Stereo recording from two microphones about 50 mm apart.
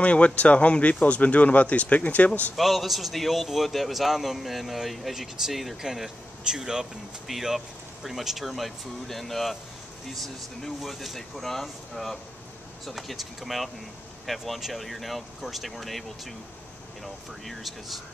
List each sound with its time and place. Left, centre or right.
0.0 s speech: left
2.5 s a man's voice: centre